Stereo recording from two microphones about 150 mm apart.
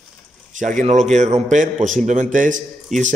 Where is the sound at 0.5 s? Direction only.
55° right (ahead or behind).